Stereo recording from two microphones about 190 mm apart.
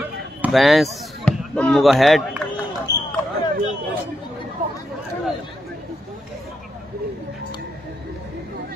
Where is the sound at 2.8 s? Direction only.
20° left (ahead or behind).